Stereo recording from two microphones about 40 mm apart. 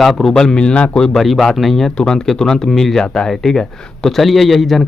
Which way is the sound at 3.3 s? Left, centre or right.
Centre.